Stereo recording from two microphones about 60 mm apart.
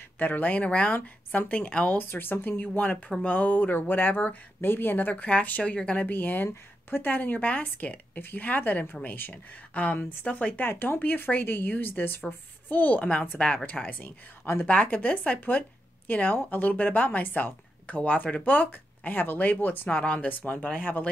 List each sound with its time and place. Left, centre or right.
0.2 s speech: left
2.0 s speech: left
6.1 s speech: left
10.7 s speech: left
13.8 s speech: left
14.7 s speech: left
20.0 s speech: left